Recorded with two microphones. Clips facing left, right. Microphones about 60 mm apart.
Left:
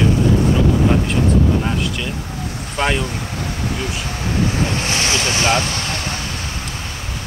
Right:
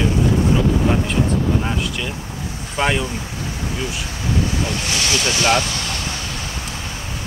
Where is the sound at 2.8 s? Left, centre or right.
Centre.